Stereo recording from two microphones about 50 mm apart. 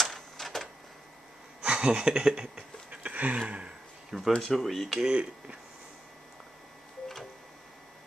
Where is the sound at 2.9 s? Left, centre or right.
Right.